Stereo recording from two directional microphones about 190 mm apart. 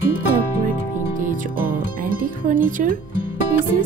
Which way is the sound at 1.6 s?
50° right (ahead or behind).